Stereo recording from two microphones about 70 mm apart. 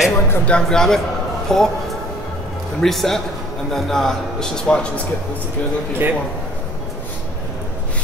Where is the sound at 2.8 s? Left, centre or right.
Centre.